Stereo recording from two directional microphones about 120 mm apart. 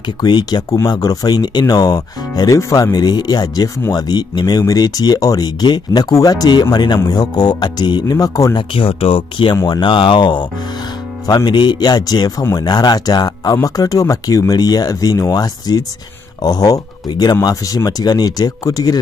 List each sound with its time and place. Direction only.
0.2 s speech: 35° left (ahead or behind)
8.7 s speech: 50° left (ahead or behind); by 18.9 s 30° left (ahead or behind)